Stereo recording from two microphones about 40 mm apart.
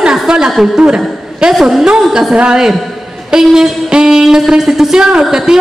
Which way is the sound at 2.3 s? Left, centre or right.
Right.